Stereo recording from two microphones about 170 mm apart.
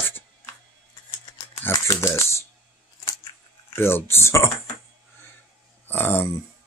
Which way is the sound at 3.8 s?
15° left (ahead or behind).